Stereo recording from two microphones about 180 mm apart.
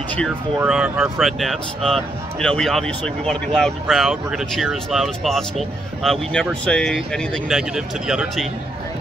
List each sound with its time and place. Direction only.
0.6 s speech: 5° right (ahead or behind)